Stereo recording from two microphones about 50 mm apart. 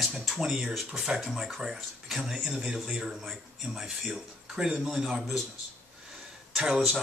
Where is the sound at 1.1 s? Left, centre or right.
Centre.